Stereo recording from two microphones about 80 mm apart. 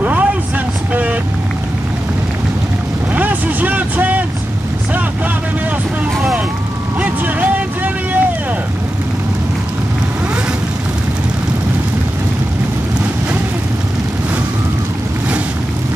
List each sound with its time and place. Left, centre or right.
0.0 s vehicle: centre
3.1 s vehicle: centre
7.3 s vehicle: right